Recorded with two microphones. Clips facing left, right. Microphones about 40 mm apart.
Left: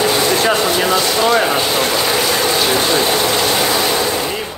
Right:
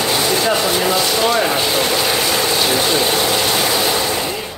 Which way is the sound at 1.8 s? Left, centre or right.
Centre.